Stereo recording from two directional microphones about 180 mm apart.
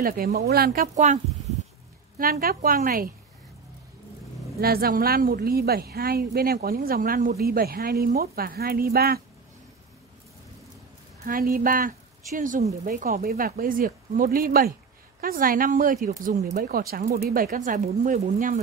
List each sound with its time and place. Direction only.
0.0 s a woman's voice: 55° right (ahead or behind)
0.9 s speech: 40° right (ahead or behind)
2.1 s speech: 55° right (ahead or behind)
4.6 s a woman's voice: 55° right (ahead or behind)
11.2 s speech: 55° right (ahead or behind)
16.5 s a woman's voice: 55° right (ahead or behind)